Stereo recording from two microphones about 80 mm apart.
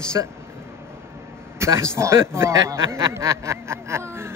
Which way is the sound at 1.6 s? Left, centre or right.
Right.